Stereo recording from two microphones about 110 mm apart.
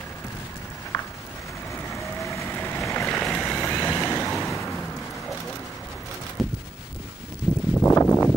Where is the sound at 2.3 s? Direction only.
25° left (ahead or behind).